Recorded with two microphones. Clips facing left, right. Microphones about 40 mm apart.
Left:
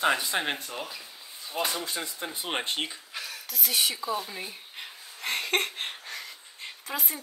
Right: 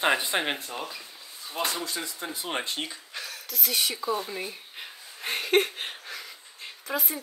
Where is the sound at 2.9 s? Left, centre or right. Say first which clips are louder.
Even; centre.